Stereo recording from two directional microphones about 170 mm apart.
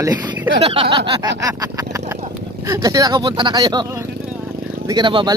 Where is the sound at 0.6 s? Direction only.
35° right (ahead or behind).